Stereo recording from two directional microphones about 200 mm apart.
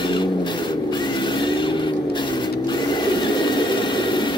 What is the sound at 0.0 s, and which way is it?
Vehicle, 25° left (ahead or behind).